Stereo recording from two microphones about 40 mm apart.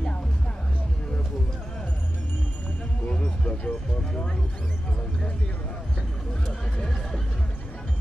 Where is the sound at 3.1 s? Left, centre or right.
Left.